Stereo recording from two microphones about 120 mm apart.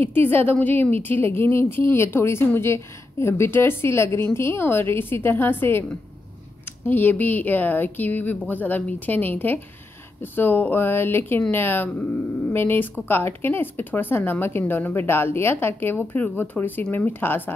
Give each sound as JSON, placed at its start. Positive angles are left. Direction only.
{"t": 0.1, "sound": "a woman's voice", "side_deg": 15}
{"t": 6.9, "sound": "speech", "side_deg": 15}